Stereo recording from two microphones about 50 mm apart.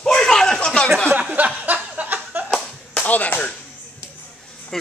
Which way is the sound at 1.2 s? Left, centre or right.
Right.